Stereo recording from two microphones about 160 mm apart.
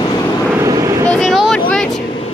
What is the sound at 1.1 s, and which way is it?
Vehicle, centre (ahead or behind).